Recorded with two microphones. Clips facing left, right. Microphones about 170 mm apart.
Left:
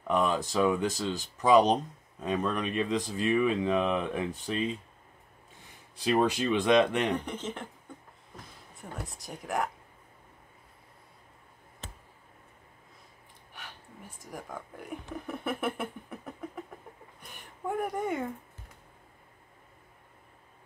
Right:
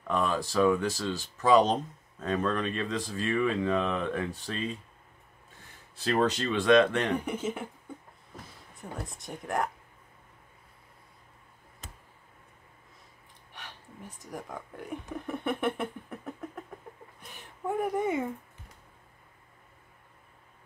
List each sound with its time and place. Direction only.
0.0 s speech: 15° left (ahead or behind)
7.2 s speech: 10° right (ahead or behind)
9.0 s speech: centre (ahead or behind)
13.5 s a sound: centre (ahead or behind)
14.3 s speech: centre (ahead or behind)
17.2 s a sound: centre (ahead or behind)